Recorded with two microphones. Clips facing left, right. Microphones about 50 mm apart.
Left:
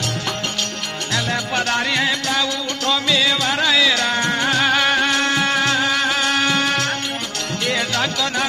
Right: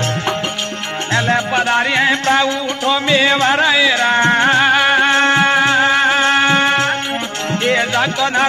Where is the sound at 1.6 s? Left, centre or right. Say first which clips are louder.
Right 3 dB; right.